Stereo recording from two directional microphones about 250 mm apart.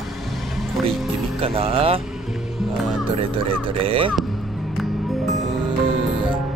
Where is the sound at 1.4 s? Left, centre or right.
Right.